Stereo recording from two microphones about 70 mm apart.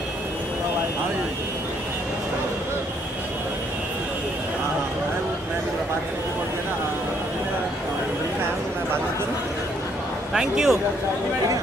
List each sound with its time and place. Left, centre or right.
10.3 s a man's voice: centre